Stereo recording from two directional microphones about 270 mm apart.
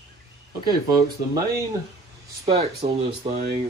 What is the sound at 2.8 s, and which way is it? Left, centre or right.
Speech, centre.